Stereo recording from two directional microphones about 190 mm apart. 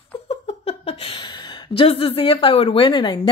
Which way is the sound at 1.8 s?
30° left (ahead or behind).